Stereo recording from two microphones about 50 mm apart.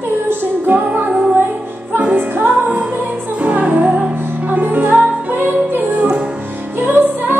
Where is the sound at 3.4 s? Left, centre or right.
Right.